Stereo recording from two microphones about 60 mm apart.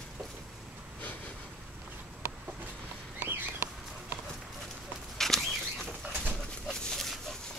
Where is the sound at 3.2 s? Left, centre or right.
Right.